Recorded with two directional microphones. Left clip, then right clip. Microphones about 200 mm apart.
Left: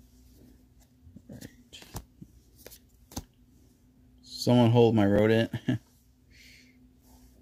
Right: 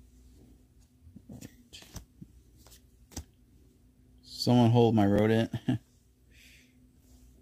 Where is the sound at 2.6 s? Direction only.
15° left (ahead or behind).